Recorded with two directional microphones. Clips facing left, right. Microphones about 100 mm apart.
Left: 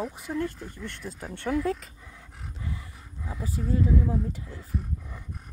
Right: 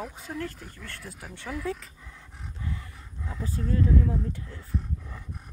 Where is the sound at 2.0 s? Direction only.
5° left (ahead or behind).